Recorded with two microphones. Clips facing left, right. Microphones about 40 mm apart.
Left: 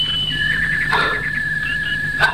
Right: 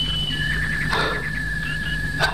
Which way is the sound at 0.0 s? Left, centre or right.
Left.